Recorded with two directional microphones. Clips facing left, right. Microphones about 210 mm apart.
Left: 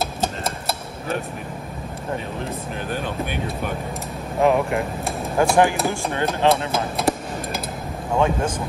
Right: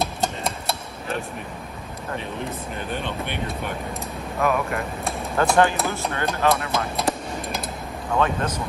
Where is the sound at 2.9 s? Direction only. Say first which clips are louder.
Left 3 dB; 5° left (ahead or behind).